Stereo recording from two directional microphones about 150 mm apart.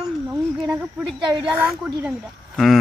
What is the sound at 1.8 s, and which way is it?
Speech, centre (ahead or behind).